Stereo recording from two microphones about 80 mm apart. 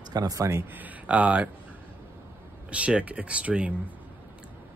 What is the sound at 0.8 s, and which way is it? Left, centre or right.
Speech, centre.